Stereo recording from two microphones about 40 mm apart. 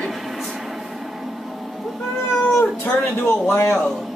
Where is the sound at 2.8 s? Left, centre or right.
Left.